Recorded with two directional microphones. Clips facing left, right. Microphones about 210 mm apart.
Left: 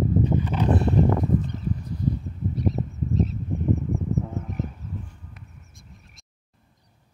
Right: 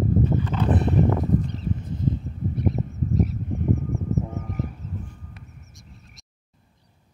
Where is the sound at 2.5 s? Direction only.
55° right (ahead or behind).